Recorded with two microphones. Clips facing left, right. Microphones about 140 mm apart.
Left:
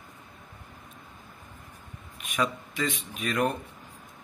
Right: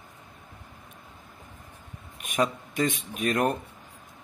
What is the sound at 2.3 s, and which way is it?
A man's voice, 45° right (ahead or behind).